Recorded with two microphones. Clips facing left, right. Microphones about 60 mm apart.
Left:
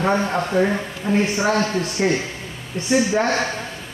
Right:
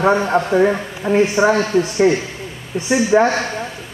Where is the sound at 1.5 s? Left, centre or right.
Centre.